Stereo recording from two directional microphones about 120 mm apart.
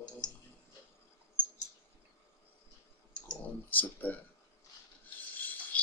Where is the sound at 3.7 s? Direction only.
15° left (ahead or behind).